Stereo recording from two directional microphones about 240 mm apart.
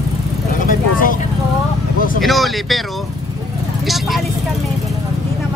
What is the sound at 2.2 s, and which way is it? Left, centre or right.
Speech, centre.